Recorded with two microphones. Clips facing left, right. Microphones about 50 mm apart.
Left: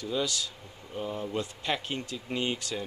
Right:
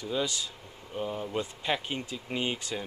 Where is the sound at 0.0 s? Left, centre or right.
Centre.